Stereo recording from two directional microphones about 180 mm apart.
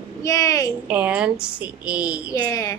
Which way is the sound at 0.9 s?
10° right (ahead or behind).